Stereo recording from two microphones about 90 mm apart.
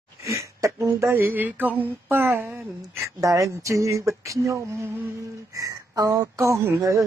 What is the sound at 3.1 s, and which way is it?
Speech, 40° right (ahead or behind).